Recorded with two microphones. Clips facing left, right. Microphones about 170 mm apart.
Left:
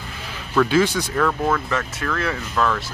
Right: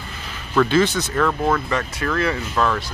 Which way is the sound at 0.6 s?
10° left (ahead or behind).